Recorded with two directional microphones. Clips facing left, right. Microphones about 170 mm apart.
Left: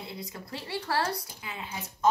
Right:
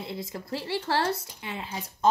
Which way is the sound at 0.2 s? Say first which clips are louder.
Right 6 dB; 30° right (ahead or behind).